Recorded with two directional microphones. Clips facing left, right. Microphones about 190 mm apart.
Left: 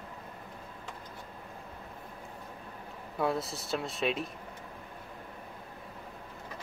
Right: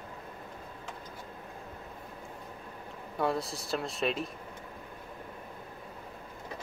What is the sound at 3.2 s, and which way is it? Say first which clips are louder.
Speech: even; centre (ahead or behind).